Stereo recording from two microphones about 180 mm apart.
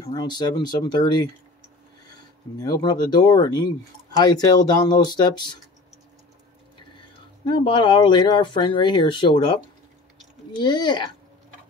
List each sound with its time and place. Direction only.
0.0 s speech: 20° left (ahead or behind)
2.6 s speech: 20° left (ahead or behind)
7.4 s speech: 25° left (ahead or behind)
10.6 s speech: 25° left (ahead or behind)